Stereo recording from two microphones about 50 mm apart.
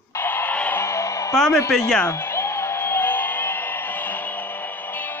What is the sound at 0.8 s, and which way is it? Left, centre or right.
Music, left.